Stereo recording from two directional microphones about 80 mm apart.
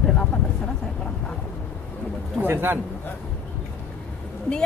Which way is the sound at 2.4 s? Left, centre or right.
Right.